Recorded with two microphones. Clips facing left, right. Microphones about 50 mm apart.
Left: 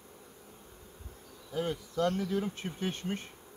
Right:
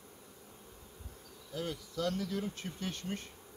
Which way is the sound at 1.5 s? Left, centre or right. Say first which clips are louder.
Left 6 dB; left.